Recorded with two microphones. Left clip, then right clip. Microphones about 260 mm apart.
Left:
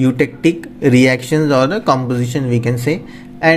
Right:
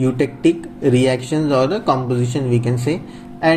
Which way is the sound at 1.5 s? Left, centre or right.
Left.